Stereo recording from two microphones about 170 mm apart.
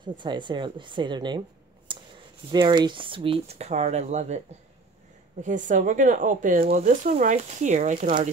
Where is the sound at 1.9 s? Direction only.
30° right (ahead or behind).